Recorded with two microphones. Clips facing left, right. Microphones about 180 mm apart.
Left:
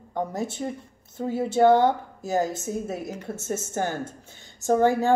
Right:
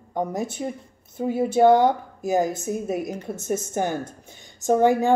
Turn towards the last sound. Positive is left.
turn(degrees=-15)  # may be behind; listen again after turning